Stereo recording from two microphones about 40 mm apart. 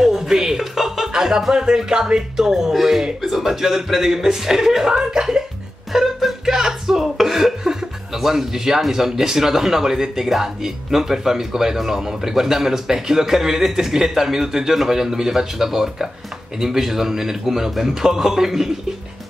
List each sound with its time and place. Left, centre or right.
0.0 s music: centre
1.5 s speech: centre